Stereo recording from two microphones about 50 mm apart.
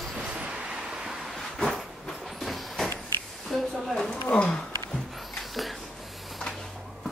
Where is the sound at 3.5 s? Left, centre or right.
Centre.